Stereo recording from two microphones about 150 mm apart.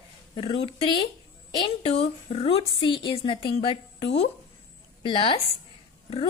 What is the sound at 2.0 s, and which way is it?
A woman's voice, 45° left (ahead or behind).